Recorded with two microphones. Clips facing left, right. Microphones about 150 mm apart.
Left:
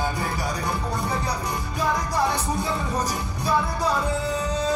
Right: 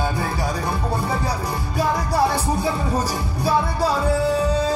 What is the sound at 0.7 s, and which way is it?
Music, 30° right (ahead or behind).